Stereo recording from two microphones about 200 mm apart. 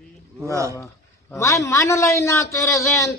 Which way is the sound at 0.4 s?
15° right (ahead or behind).